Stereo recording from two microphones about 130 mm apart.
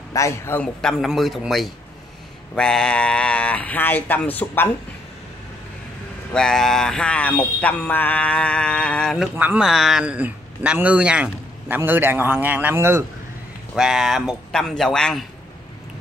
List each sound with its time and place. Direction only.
0.1 s a man's voice: 20° left (ahead or behind)
0.6 s speech: 5° left (ahead or behind)
2.5 s a sound: 5° left (ahead or behind)
6.3 s a sound: 5° left (ahead or behind)
9.4 s speech: 10° right (ahead or behind)
13.7 s speech: 5° right (ahead or behind)